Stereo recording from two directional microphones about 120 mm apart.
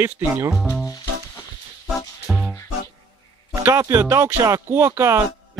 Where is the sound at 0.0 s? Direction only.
25° right (ahead or behind).